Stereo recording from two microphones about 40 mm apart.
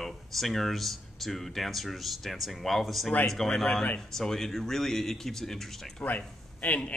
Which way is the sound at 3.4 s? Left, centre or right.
Centre.